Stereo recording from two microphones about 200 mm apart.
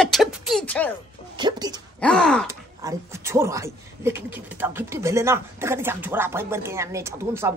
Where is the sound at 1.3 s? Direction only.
20° right (ahead or behind).